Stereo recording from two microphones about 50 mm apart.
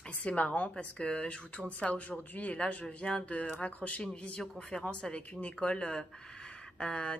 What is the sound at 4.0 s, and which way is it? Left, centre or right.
Speech, centre.